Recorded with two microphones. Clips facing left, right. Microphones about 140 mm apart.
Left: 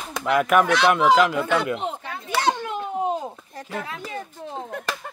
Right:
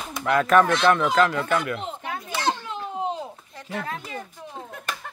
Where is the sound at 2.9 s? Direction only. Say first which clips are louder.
Left 3 dB; 45° left (ahead or behind).